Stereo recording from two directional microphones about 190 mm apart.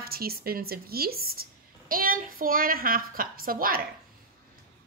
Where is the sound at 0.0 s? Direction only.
55° right (ahead or behind).